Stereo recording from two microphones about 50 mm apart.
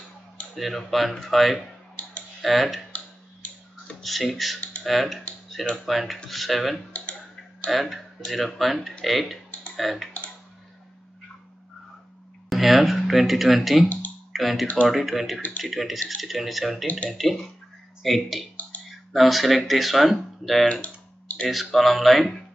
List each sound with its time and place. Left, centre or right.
0.6 s speech: centre
4.0 s speech: centre
9.8 s tick-tock: centre
12.4 s speech: centre
20.8 s typing: left
21.7 s speech: centre